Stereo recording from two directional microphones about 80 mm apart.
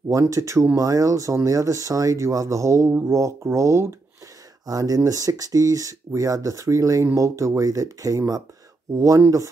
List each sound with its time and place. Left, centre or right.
0.1 s speech: right
4.6 s speech: right